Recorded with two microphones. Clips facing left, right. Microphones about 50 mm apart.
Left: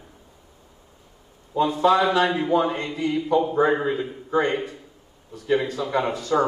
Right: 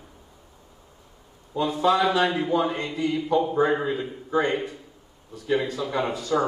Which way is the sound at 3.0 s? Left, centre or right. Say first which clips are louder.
Left 1 dB; centre.